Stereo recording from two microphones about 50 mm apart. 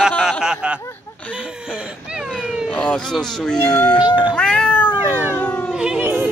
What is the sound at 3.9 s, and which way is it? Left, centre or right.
Speech, right.